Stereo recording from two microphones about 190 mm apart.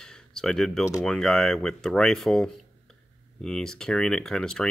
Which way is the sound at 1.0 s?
5° left (ahead or behind).